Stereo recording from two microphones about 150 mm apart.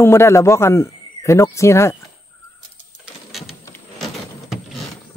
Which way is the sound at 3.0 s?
Centre (ahead or behind).